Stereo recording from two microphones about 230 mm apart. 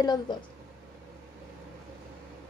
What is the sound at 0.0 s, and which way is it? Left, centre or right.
Speech, centre.